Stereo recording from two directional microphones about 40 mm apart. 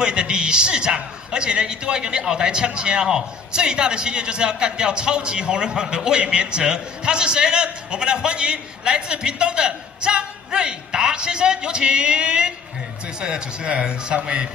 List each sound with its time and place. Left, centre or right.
0.0 s a man's voice: right